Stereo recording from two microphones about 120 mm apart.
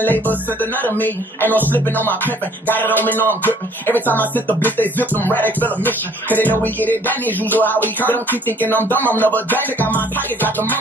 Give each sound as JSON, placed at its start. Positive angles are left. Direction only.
{"t": 0.0, "sound": "music", "side_deg": 15}